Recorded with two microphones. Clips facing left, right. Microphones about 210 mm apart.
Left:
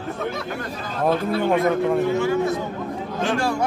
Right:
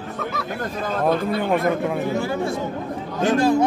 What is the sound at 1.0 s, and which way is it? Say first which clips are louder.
Speech: left 1 dB; centre (ahead or behind).